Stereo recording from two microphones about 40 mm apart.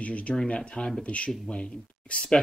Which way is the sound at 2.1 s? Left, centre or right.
Left.